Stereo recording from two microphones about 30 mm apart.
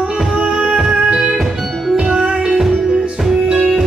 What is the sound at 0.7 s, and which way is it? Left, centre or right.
Music, right.